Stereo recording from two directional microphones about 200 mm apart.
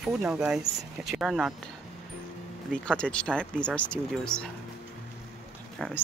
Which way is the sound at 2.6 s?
5° left (ahead or behind).